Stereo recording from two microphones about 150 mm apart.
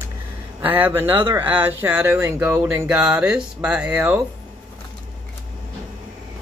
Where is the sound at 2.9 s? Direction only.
5° right (ahead or behind).